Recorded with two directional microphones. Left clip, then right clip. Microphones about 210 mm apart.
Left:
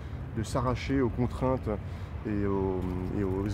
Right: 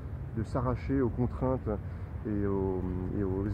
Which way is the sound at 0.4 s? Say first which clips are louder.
Left 3 dB; centre (ahead or behind).